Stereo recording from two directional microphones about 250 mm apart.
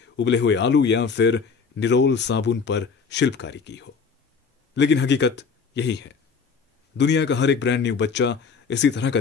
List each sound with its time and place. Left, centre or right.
0.1 s a man's voice: left